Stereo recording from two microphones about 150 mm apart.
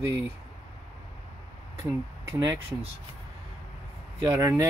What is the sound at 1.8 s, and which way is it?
Speech, 20° right (ahead or behind).